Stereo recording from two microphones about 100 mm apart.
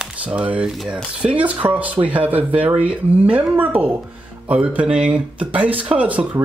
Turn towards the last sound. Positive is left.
turn(degrees=-15)  # may be behind; listen again after turning